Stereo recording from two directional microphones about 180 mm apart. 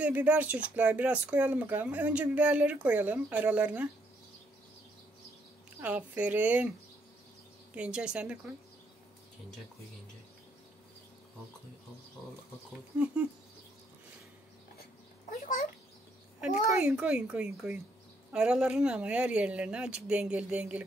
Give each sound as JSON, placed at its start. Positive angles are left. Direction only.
{"t": 0.0, "sound": "speech", "side_deg": -10}
{"t": 5.8, "sound": "speech", "side_deg": -10}
{"t": 7.7, "sound": "speech", "side_deg": -5}
{"t": 13.0, "sound": "speech", "side_deg": -10}
{"t": 16.3, "sound": "speech", "side_deg": -5}